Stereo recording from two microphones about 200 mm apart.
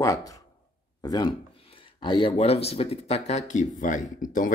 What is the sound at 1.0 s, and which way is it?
Speech, 20° left (ahead or behind).